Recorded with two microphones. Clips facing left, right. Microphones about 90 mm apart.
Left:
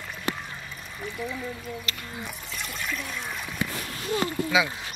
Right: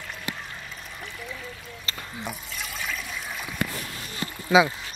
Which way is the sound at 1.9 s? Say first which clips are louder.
Even; 30° right (ahead or behind).